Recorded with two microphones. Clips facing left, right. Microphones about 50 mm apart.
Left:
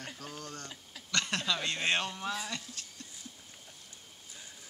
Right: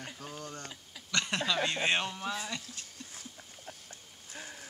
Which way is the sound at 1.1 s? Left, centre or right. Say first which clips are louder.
Right 1 dB; centre.